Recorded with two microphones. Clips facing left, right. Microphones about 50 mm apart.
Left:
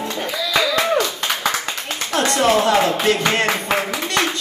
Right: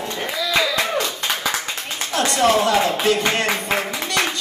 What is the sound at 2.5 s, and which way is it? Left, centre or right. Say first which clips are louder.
Speech: left 2 dB; left.